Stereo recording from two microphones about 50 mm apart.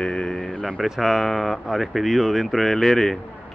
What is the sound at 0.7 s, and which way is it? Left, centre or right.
Speech, centre.